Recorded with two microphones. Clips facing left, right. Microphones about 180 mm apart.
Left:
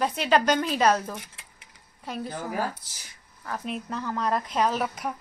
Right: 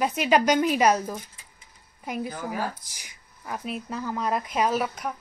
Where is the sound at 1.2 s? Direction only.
80° left.